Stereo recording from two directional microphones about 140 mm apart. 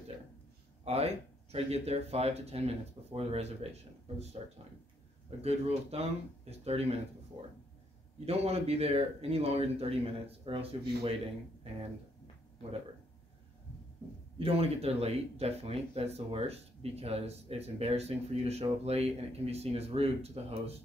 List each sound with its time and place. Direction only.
0.8 s speech: 45° right (ahead or behind)
5.4 s speech: 50° right (ahead or behind)
14.4 s speech: 45° right (ahead or behind)